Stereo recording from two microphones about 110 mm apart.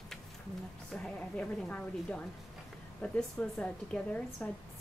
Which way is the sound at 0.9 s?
5° left (ahead or behind).